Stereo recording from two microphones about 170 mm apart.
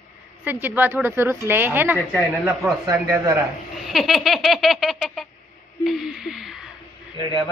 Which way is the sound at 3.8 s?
Centre (ahead or behind).